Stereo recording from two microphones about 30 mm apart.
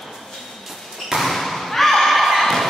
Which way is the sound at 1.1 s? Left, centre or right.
Centre.